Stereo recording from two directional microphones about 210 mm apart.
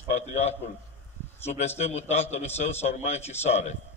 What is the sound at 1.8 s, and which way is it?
A man's voice, 30° left (ahead or behind).